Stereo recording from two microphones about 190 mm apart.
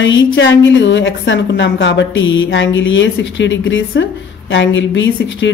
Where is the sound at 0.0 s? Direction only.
75° left (ahead or behind).